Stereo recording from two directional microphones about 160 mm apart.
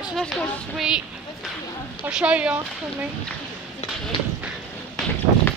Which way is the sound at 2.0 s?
5° right (ahead or behind).